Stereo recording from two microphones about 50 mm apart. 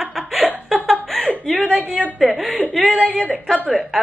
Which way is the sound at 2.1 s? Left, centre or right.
Centre.